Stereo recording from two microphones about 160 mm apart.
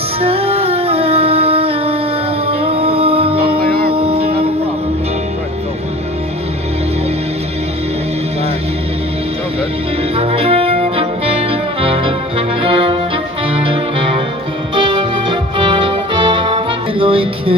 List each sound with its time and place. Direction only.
0.2 s music: 35° right (ahead or behind)
10.1 s music: 35° right (ahead or behind)